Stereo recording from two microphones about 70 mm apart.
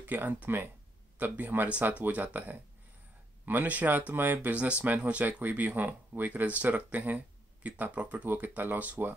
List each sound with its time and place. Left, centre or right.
0.0 s speech: right